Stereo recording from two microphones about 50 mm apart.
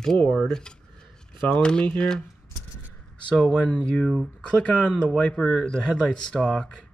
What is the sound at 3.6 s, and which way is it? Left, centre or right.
Speech, left.